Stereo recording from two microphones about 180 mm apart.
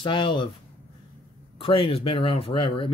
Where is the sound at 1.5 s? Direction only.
30° left (ahead or behind).